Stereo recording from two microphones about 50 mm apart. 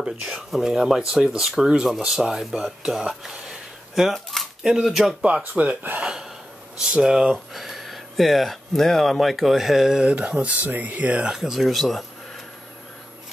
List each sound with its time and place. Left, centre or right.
0.3 s speech: centre
4.3 s shuffling cards: centre
4.7 s speech: centre
5.4 s speech: right
6.0 s a sound: centre
6.8 s speech: centre
7.3 s speech: centre
10.1 s speech: right
11.2 s speech: centre